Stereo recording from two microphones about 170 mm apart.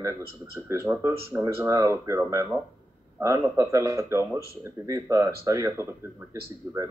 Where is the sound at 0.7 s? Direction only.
15° right (ahead or behind).